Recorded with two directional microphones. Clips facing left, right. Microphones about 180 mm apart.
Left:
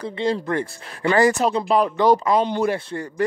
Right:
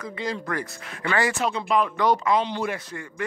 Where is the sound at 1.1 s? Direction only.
40° left (ahead or behind).